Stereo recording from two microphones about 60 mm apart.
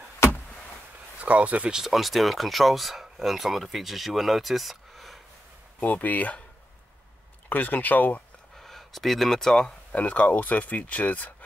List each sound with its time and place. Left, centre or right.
1.2 s speech: right
1.7 s speech: centre
5.8 s speech: left
7.4 s speech: left
8.5 s speech: centre
9.9 s speech: left